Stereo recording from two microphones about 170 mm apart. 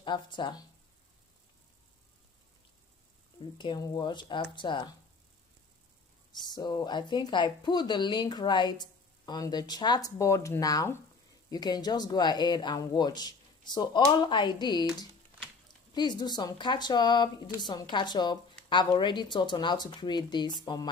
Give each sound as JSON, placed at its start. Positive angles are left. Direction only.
{"t": 0.0, "sound": "a woman's voice", "side_deg": 30}
{"t": 3.3, "sound": "a woman's voice", "side_deg": 30}
{"t": 6.4, "sound": "a woman's voice", "side_deg": 25}
{"t": 15.9, "sound": "a woman's voice", "side_deg": 25}